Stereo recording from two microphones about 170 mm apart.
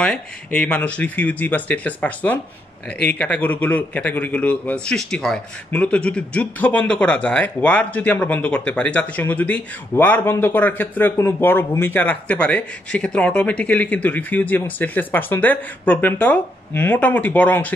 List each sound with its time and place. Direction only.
0.0 s a man's voice: 5° left (ahead or behind)